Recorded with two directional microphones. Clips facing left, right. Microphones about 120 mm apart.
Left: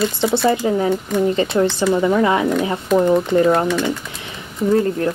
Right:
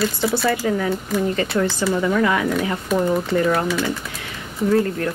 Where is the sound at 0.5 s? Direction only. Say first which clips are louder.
Left 5 dB; 25° left (ahead or behind).